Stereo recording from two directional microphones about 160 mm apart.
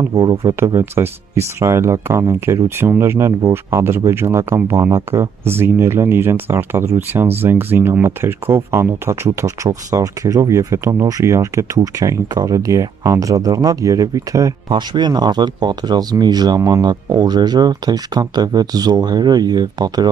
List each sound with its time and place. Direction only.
0.1 s speech: 25° right (ahead or behind)